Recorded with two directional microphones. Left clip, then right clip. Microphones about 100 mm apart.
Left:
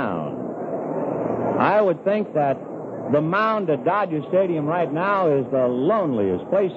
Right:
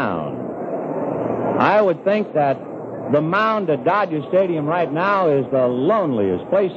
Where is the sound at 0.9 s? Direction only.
30° right (ahead or behind).